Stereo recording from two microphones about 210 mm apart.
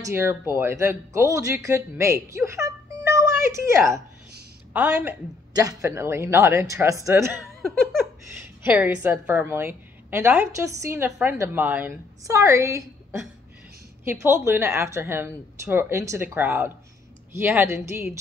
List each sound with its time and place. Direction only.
0.0 s a woman's voice: 10° right (ahead or behind)
8.6 s a woman's voice: 10° right (ahead or behind)
14.2 s a woman's voice: 10° right (ahead or behind)